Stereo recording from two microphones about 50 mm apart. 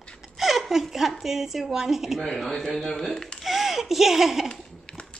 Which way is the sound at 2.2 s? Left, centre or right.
Centre.